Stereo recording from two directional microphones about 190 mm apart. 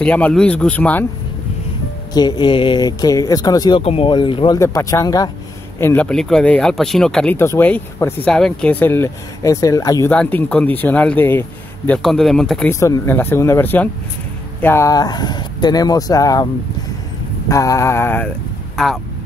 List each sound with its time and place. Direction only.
0.0 s speech: 5° left (ahead or behind)
2.1 s speech: 20° left (ahead or behind)
17.5 s speech: 15° left (ahead or behind)